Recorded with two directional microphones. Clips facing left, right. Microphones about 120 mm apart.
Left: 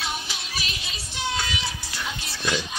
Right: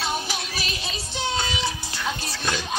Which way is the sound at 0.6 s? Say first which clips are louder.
Right 4 dB; 35° right (ahead or behind).